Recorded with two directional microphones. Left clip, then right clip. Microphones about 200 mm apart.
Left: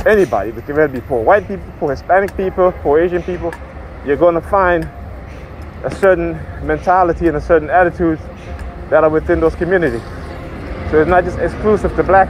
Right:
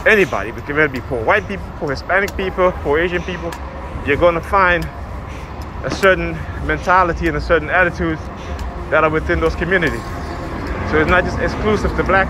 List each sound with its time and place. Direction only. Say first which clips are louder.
0.0 s speech: left 2 dB; 40° left (ahead or behind)
5.9 s speech: left 2 dB; 30° left (ahead or behind)